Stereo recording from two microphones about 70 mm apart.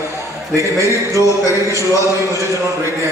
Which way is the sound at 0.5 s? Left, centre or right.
Right.